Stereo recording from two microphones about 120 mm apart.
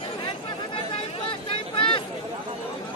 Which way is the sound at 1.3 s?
45° left (ahead or behind).